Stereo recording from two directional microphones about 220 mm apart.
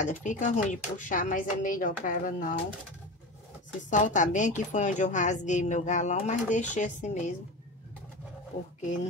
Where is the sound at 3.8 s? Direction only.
35° left (ahead or behind).